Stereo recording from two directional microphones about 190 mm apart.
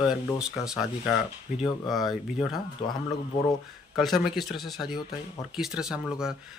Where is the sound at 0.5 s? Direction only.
Centre (ahead or behind).